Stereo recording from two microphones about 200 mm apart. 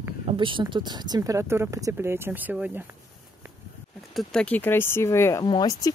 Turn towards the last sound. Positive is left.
turn(degrees=20)  # may be behind; listen again after turning